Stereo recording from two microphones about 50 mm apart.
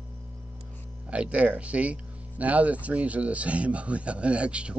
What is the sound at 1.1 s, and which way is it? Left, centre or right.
Speech, right.